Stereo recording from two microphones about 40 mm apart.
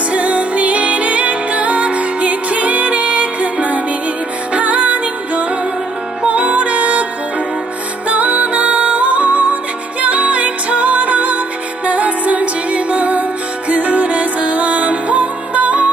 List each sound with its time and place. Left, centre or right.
0.1 s music: right
8.1 s music: right